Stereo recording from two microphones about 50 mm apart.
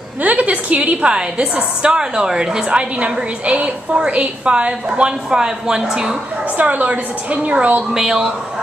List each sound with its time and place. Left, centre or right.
0.2 s a woman's voice: right; by 6.1 s centre
6.5 s a woman's voice: right
7.9 s speech: centre